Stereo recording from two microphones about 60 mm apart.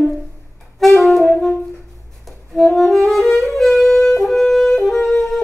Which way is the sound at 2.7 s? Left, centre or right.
Centre.